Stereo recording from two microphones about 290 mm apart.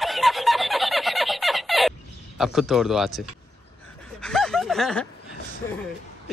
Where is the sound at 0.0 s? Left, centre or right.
Centre.